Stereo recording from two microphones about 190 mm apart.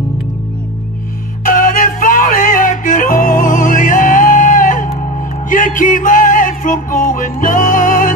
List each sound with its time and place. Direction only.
1.4 s music: 45° left (ahead or behind)